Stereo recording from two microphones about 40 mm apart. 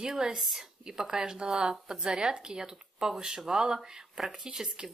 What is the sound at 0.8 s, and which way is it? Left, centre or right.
Speech, centre.